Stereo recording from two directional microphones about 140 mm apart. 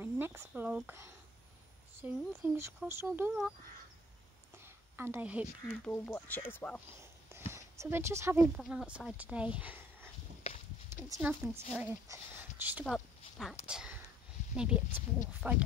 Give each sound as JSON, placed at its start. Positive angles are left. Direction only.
{"t": 0.0, "sound": "speech", "side_deg": -15}
{"t": 3.3, "sound": "speech", "side_deg": 0}
{"t": 4.9, "sound": "speech", "side_deg": -15}
{"t": 5.7, "sound": "speech", "side_deg": 10}
{"t": 7.0, "sound": "a sound", "side_deg": -20}
{"t": 8.5, "sound": "speech", "side_deg": -5}
{"t": 10.4, "sound": "a sound", "side_deg": 45}
{"t": 11.1, "sound": "speech", "side_deg": -15}
{"t": 12.8, "sound": "speech", "side_deg": 0}